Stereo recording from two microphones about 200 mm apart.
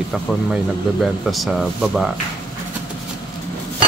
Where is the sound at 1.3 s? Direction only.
Centre (ahead or behind).